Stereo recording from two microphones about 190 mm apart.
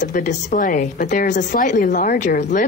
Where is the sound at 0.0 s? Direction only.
40° left (ahead or behind).